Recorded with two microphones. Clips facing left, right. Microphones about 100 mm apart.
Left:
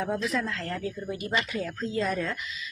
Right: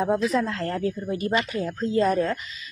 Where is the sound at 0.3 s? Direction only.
40° right (ahead or behind).